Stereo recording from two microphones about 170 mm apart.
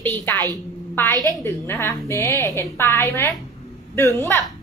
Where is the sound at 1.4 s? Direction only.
15° left (ahead or behind).